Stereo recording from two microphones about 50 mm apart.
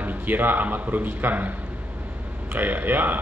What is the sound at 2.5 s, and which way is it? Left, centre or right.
Speech, right.